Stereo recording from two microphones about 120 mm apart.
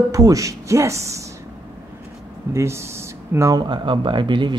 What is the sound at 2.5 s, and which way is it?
Speech, 25° right (ahead or behind).